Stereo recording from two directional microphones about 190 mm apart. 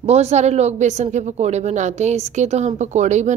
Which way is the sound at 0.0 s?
35° right (ahead or behind).